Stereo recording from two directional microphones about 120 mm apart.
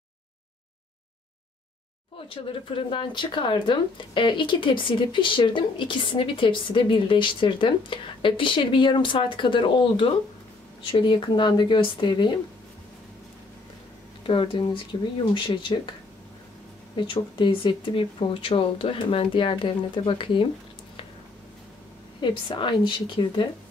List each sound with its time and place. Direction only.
2.2 s speech: 45° left (ahead or behind)
14.2 s speech: 45° left (ahead or behind)
16.9 s speech: 45° left (ahead or behind)
22.2 s speech: 40° left (ahead or behind)